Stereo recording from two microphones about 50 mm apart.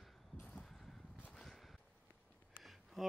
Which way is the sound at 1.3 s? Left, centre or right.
Centre.